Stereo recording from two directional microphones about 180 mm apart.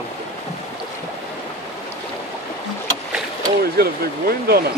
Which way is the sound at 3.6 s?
60° right (ahead or behind).